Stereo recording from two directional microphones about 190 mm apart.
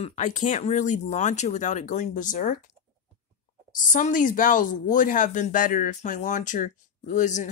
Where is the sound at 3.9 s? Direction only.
45° left (ahead or behind).